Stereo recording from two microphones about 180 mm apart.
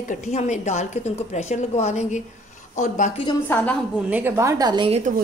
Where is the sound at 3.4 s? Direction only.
10° left (ahead or behind).